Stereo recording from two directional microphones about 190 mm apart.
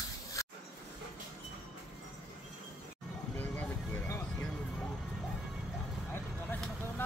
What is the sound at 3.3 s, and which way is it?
Music, 10° left (ahead or behind).